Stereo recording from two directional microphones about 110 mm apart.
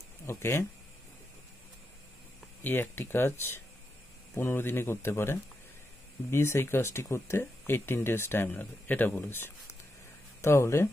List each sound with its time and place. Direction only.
0.3 s speech: 25° left (ahead or behind)
2.6 s speech: 15° left (ahead or behind)